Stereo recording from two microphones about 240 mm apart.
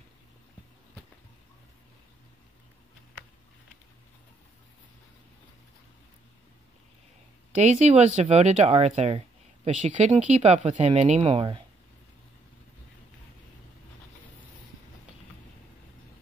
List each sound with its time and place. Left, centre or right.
7.5 s speech: right